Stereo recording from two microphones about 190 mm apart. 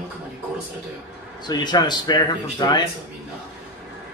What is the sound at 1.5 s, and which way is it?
A man's voice, 20° left (ahead or behind).